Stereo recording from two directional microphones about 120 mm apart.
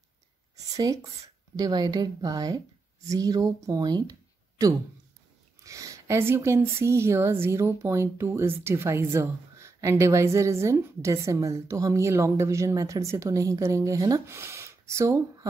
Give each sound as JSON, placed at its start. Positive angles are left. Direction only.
{"t": 0.7, "sound": "a woman's voice", "side_deg": -30}